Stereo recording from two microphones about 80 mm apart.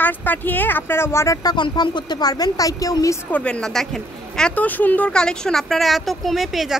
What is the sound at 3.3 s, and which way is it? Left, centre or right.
Speech, centre.